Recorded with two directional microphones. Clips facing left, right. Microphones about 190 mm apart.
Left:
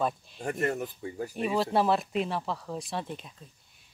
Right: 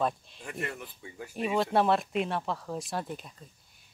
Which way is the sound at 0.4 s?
45° left (ahead or behind).